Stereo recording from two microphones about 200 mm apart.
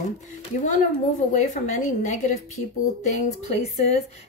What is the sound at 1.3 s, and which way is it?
A woman's voice, 35° left (ahead or behind).